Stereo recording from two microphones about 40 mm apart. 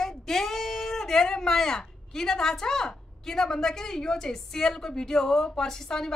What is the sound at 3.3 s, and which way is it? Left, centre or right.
A woman's voice, centre.